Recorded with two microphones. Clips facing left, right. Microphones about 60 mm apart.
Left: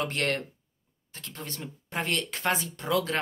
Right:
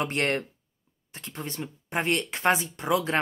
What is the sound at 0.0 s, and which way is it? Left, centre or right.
Speech, right.